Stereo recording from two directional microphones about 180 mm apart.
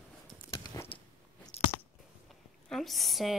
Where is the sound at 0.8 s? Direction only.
20° left (ahead or behind).